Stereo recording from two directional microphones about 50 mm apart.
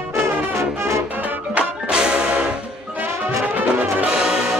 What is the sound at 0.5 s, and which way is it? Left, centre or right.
Music, right.